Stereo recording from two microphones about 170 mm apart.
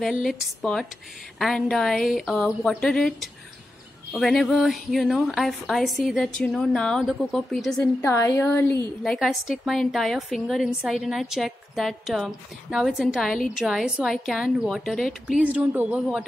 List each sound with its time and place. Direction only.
0.0 s a woman's voice: centre (ahead or behind)
7.8 s a woman's voice: 15° left (ahead or behind)
9.0 s a woman's voice: centre (ahead or behind)